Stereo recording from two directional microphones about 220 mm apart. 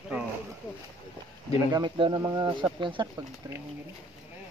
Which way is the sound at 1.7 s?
20° right (ahead or behind).